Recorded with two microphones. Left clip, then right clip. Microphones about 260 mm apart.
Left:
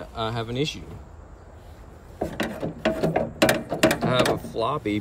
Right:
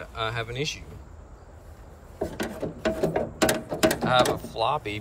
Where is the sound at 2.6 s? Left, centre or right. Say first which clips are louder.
Left 1 dB; centre.